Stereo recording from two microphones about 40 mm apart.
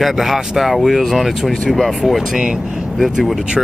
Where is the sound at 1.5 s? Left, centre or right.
Centre.